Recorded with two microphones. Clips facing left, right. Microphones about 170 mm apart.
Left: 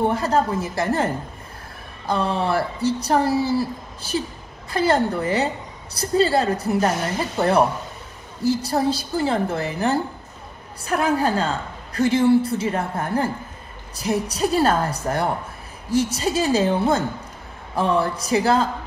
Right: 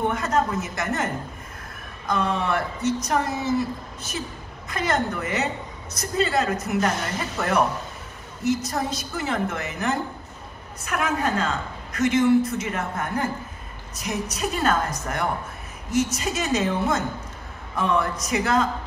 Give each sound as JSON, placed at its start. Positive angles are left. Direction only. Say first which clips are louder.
{"t": 0.0, "sound": "a woman's voice", "louder": "left 3 dB", "side_deg": 30}